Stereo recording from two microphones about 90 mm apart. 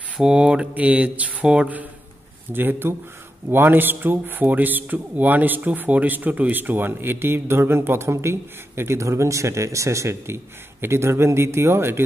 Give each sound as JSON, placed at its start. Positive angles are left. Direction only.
{"t": 0.2, "sound": "speech", "side_deg": -10}